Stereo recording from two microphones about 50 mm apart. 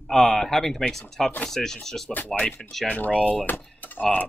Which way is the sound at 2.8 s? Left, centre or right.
Left.